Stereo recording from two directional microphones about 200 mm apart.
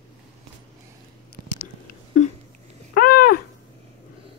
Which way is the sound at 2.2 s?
35° left (ahead or behind).